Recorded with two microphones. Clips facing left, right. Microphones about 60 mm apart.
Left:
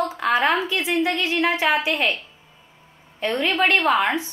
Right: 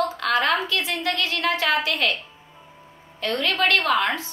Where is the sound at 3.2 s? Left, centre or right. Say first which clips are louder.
Left 2 dB; centre.